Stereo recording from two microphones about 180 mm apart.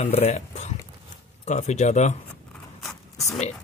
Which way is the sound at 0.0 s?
35° left (ahead or behind).